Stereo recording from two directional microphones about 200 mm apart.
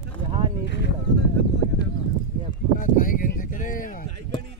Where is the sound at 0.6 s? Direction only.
60° left (ahead or behind).